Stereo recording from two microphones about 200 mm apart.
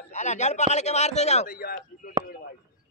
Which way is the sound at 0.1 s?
35° left (ahead or behind).